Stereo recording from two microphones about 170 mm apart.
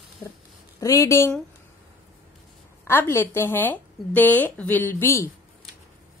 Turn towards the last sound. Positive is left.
turn(degrees=15)  # may be behind; listen again after turning